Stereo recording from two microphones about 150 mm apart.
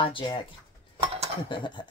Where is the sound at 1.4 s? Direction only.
30° left (ahead or behind).